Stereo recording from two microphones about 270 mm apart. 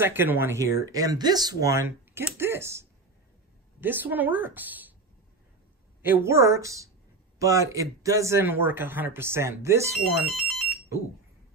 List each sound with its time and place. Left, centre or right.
0.0 s speech: centre
6.0 s speech: centre
10.1 s ringtone: centre